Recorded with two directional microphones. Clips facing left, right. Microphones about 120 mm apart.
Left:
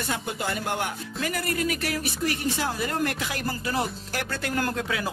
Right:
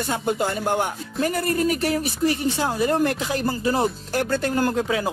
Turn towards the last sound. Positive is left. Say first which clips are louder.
# right 6 dB
turn(degrees=-25)  # may be behind; listen again after turning